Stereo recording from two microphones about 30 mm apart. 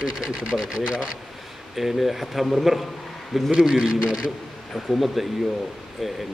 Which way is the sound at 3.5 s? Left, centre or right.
Right.